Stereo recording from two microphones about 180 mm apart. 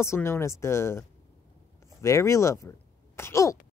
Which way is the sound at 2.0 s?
15° left (ahead or behind).